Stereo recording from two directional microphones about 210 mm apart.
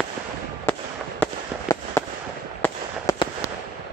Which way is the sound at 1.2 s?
15° left (ahead or behind).